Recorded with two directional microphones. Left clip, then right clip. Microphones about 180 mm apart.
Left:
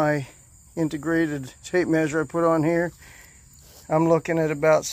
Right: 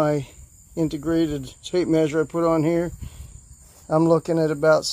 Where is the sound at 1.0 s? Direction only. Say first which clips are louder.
Even; 15° left (ahead or behind).